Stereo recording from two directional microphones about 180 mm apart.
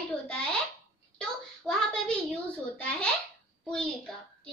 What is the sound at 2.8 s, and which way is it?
Speech, 5° left (ahead or behind).